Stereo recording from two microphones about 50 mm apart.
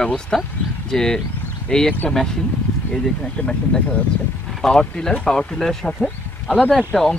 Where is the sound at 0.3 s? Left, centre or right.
Centre.